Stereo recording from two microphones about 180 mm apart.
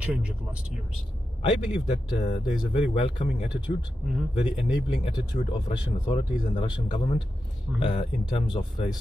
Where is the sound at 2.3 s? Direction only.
30° left (ahead or behind).